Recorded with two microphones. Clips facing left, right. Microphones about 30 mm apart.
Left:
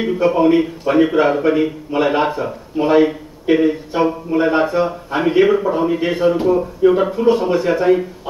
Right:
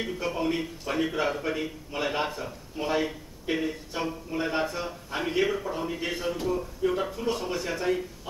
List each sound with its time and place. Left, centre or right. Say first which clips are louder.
0.0 s speech: left 15 dB; left